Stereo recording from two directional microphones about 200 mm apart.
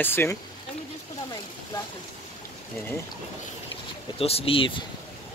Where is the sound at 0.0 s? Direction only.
10° left (ahead or behind).